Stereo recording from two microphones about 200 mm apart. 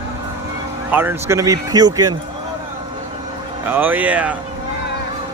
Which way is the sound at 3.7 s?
10° right (ahead or behind).